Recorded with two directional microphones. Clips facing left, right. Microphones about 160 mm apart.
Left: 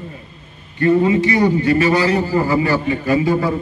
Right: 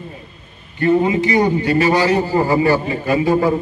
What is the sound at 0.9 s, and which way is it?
A man's voice, 25° right (ahead or behind).